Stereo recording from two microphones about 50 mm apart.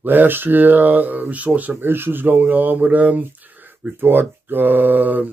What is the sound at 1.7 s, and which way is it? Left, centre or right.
Speech, right.